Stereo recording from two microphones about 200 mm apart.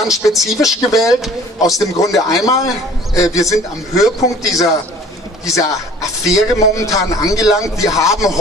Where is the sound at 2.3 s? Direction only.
15° left (ahead or behind).